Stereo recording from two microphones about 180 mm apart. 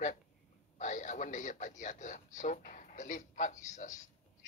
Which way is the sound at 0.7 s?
45° left (ahead or behind).